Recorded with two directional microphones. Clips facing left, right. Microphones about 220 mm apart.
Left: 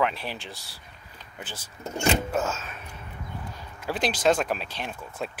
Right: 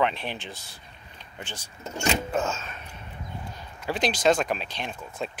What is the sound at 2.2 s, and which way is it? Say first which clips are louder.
Speech: even; 5° left (ahead or behind).